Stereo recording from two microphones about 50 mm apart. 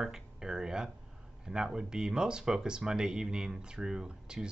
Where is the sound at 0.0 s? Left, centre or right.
Centre.